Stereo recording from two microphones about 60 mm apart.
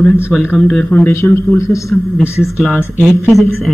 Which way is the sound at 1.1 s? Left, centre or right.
Left.